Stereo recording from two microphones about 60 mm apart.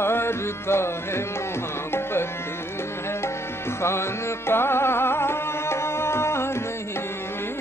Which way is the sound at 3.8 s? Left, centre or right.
Left.